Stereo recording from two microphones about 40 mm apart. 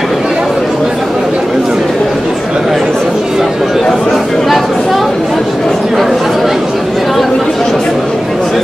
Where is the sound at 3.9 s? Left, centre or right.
Centre.